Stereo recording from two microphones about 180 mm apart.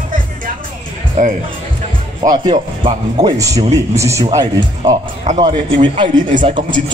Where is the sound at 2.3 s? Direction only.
25° right (ahead or behind).